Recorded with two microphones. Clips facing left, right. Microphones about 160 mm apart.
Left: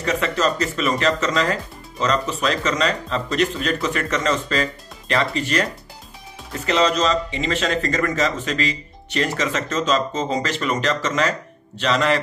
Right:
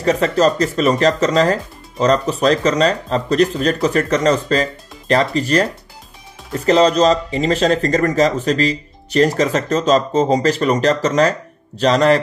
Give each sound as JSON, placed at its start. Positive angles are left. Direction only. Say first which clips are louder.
{"t": 0.0, "sound": "speech", "louder": "right 7 dB", "side_deg": -35}